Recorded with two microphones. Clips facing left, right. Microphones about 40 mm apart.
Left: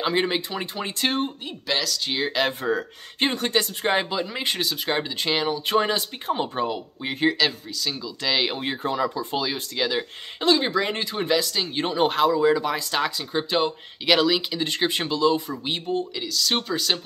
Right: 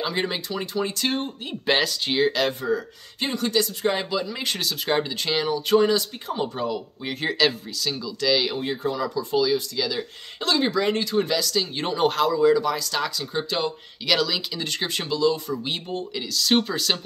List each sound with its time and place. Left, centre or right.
0.0 s speech: left
1.7 s speech: right
2.2 s speech: centre
2.6 s speech: left; by 5.6 s centre
5.7 s speech: left
7.2 s speech: centre
8.2 s speech: left
10.4 s speech: centre
15.6 s speech: centre